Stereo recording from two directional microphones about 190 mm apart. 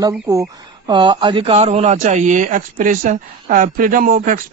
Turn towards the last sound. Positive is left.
turn(degrees=-45)  # may be behind; listen again after turning